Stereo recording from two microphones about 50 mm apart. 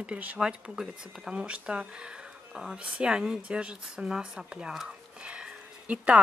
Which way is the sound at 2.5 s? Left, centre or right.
Centre.